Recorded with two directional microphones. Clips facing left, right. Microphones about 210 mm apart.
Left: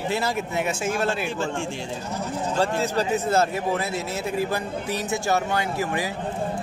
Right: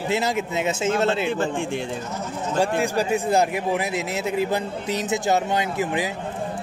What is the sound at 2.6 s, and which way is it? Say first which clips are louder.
A man's voice: right 2 dB; 15° right (ahead or behind).